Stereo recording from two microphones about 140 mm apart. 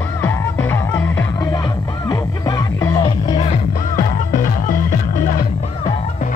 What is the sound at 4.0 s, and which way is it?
Music, 75° left (ahead or behind).